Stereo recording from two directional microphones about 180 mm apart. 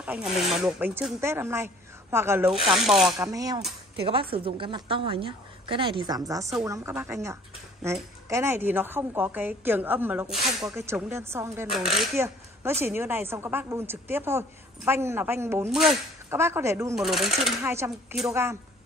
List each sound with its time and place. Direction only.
0.0 s a woman's voice: 5° right (ahead or behind)
2.6 s speech: centre (ahead or behind)
3.2 s a woman's voice: 20° right (ahead or behind)
4.0 s a woman's voice: 30° right (ahead or behind); by 11.6 s 15° right (ahead or behind)
11.7 s speech: centre (ahead or behind)
12.8 s a woman's voice: 10° right (ahead or behind)
15.7 s speech: centre (ahead or behind)
16.3 s a woman's voice: 15° right (ahead or behind)
16.9 s speech: centre (ahead or behind)
17.6 s a woman's voice: 15° right (ahead or behind)